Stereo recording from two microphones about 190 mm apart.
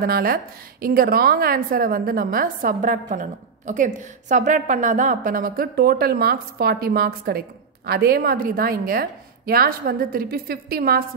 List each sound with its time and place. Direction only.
0.0 s a woman's voice: 50° right (ahead or behind)